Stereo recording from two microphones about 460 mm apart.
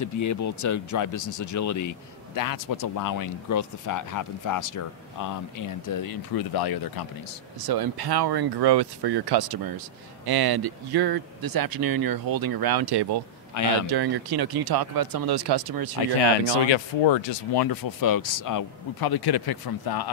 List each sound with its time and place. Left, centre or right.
0.0 s speech: left
7.6 s speech: right
16.6 s speech: left